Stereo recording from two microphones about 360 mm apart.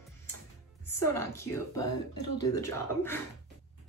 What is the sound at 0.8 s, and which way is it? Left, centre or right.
Music, centre.